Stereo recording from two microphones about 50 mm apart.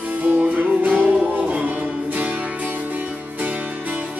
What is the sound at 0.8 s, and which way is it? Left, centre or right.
Music, right.